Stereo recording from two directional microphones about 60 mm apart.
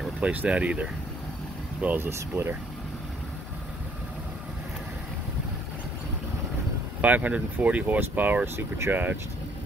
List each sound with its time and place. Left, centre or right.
0.2 s speech: right
2.0 s speech: right
7.0 s speech: right
8.5 s speech: right
8.9 s speech: right